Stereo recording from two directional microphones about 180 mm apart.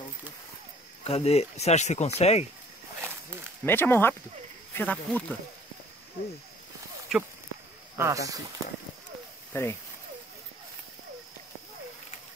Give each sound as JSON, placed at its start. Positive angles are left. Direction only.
{"t": 1.0, "sound": "speech", "side_deg": 35}
{"t": 3.6, "sound": "speech", "side_deg": 10}
{"t": 7.1, "sound": "speech", "side_deg": -5}
{"t": 8.0, "sound": "speech", "side_deg": -20}
{"t": 9.5, "sound": "speech", "side_deg": 15}